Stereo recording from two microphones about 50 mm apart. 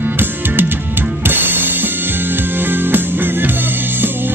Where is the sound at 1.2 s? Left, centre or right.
Right.